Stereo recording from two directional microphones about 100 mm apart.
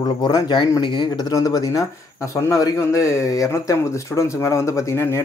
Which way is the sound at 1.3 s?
35° left (ahead or behind).